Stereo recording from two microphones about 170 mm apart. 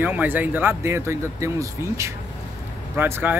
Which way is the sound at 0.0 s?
10° right (ahead or behind).